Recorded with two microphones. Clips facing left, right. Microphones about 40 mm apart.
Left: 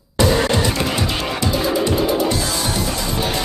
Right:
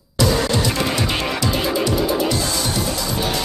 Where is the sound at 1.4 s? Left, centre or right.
Left.